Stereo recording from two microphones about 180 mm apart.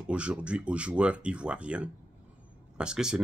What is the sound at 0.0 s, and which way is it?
Speech, 5° right (ahead or behind).